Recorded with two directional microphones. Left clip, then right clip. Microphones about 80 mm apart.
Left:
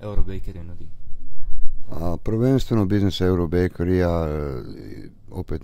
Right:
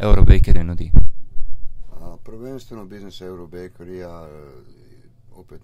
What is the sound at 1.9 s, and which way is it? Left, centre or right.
Speech, left.